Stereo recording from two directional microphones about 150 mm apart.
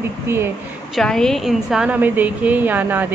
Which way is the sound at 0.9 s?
5° left (ahead or behind).